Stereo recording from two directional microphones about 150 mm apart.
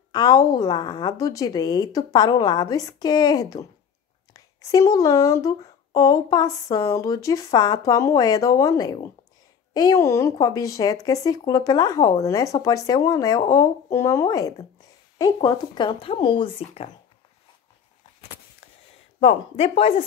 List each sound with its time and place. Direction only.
0.1 s speech: 25° left (ahead or behind); by 16.9 s 40° left (ahead or behind)
19.1 s speech: 40° left (ahead or behind)